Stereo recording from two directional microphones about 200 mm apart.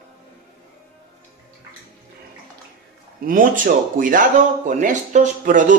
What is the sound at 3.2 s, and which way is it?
A man's voice, 45° right (ahead or behind).